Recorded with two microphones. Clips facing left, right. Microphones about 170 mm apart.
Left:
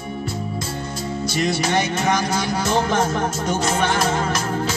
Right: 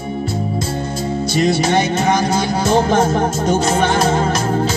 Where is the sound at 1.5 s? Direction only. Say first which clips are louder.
Right 5 dB; 30° right (ahead or behind).